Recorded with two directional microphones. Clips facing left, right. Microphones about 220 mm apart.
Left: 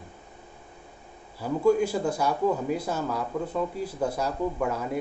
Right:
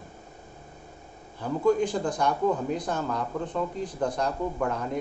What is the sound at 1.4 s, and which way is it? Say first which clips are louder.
Speech: left 1 dB; 10° left (ahead or behind).